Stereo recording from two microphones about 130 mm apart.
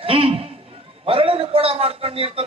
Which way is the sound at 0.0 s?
45° right (ahead or behind).